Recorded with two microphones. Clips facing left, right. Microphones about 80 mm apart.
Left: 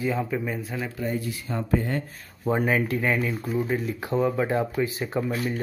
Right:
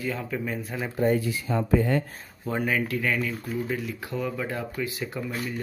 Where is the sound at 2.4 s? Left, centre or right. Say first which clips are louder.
Left 3 dB; left.